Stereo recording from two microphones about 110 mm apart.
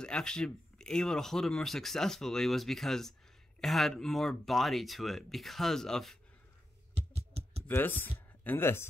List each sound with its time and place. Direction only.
0.0 s speech: 5° left (ahead or behind)
6.9 s a sound: 70° right (ahead or behind)
7.6 s speech: 15° left (ahead or behind)